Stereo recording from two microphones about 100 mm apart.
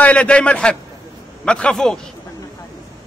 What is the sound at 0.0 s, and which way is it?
A man's voice, 10° left (ahead or behind).